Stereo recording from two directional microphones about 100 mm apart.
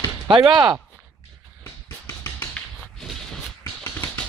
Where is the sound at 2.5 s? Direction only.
5° left (ahead or behind).